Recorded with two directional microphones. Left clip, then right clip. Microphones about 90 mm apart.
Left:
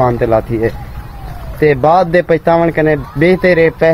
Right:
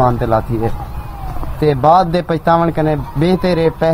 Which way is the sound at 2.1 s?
30° left (ahead or behind).